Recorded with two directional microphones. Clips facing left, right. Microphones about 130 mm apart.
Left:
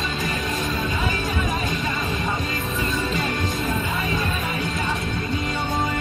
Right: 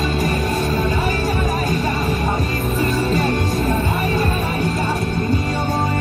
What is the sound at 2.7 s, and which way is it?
Music, 40° right (ahead or behind).